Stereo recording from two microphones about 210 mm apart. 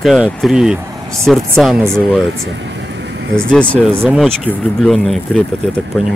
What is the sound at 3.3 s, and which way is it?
Speech, 5° left (ahead or behind).